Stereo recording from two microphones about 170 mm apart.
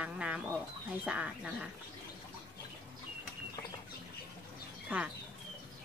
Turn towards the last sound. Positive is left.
turn(degrees=-5)  # may be behind; listen again after turning